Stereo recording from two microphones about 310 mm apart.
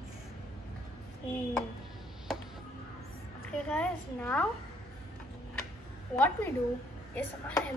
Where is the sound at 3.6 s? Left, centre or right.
Centre.